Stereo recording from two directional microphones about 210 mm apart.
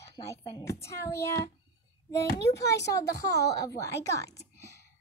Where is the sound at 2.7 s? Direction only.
50° left (ahead or behind).